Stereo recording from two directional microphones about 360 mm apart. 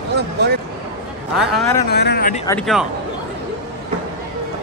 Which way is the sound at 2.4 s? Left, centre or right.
Centre.